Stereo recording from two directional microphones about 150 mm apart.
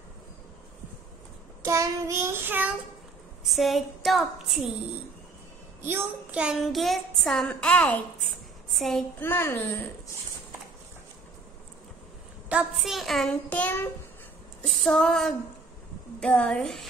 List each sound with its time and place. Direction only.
1.6 s child singing: 20° right (ahead or behind)
3.4 s speech: centre (ahead or behind)
5.8 s speech: 15° right (ahead or behind)
9.2 s a woman's voice: 15° left (ahead or behind)
12.4 s speech: 5° right (ahead or behind); by 13.8 s 10° left (ahead or behind)
14.7 s speech: centre (ahead or behind)